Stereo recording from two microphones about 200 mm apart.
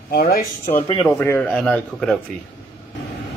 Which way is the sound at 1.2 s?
5° left (ahead or behind).